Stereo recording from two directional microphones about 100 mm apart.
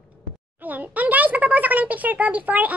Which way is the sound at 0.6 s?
15° right (ahead or behind).